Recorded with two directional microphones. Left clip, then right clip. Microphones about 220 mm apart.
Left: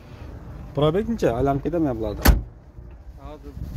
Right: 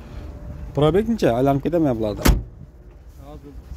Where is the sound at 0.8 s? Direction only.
30° right (ahead or behind).